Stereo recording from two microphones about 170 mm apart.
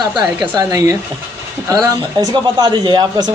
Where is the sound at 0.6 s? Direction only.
20° right (ahead or behind).